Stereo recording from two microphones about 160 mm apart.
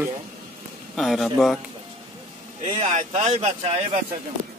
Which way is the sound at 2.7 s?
35° right (ahead or behind).